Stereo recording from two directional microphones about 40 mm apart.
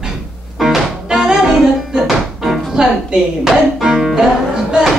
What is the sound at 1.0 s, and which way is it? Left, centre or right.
Music, centre.